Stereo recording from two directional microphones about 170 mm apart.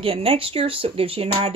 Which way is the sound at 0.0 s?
35° right (ahead or behind).